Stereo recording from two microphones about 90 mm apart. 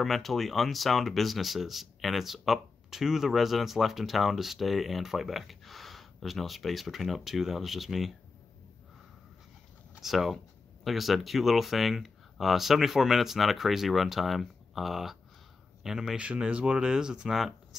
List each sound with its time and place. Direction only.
0.0 s speech: centre (ahead or behind)
9.9 s speech: centre (ahead or behind)